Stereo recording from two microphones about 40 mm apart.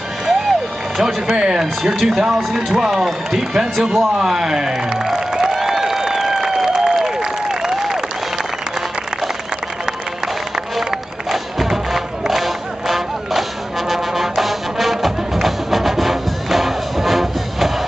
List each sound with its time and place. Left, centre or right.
0.3 s music: centre
1.3 s speech: centre
4.9 s a sound: centre
10.5 s crowd: centre